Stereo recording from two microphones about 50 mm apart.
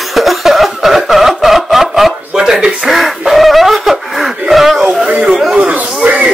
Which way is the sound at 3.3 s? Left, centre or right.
Centre.